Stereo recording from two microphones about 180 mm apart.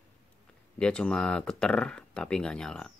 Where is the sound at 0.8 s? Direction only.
5° left (ahead or behind).